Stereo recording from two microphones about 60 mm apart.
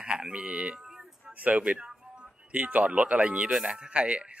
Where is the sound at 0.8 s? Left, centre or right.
Centre.